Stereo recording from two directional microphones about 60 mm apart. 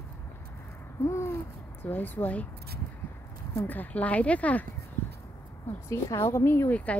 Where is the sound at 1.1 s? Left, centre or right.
Left.